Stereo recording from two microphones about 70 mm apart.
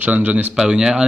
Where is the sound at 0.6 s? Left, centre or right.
Centre.